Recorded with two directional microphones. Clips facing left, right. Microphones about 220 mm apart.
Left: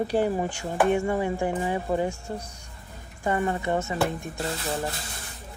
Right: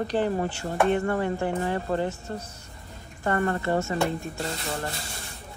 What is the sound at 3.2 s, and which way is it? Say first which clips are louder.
Speech: even; 15° left (ahead or behind).